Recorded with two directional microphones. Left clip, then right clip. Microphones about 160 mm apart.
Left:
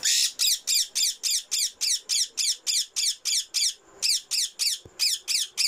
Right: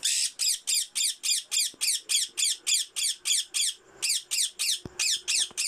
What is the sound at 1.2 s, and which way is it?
Squawk, 5° right (ahead or behind).